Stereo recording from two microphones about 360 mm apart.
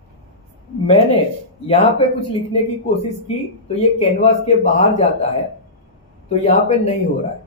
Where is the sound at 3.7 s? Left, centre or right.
Centre.